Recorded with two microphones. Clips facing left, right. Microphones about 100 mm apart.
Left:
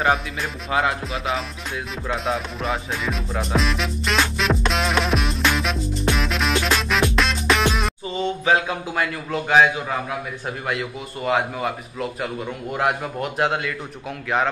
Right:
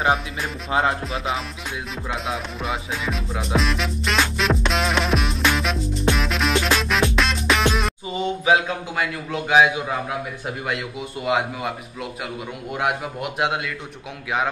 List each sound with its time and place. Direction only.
0.0 s music: 5° right (ahead or behind)
0.7 s music: 30° right (ahead or behind)
1.0 s music: centre (ahead or behind)
10.7 s music: 5° right (ahead or behind)